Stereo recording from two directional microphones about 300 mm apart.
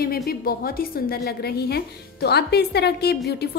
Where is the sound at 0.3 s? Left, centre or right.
Left.